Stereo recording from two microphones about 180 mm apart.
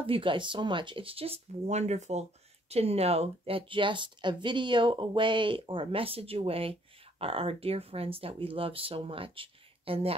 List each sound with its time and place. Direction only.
0.0 s speech: 30° right (ahead or behind)